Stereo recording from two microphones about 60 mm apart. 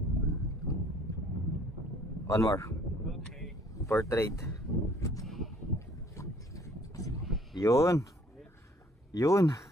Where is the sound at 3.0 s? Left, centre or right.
Centre.